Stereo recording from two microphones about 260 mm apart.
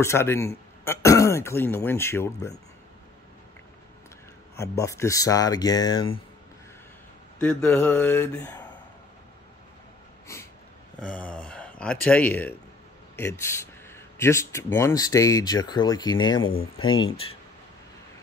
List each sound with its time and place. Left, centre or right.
0.0 s speech: centre
4.6 s speech: centre
7.3 s speech: centre
11.0 s speech: centre